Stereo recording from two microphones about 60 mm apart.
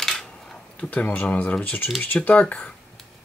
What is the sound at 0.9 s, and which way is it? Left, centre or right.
Speech, left.